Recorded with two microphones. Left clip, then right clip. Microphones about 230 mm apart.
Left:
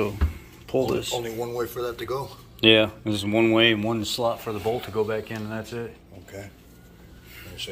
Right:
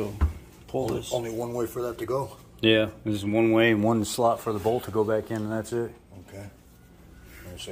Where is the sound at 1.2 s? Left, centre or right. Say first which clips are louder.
Left 1 dB; right.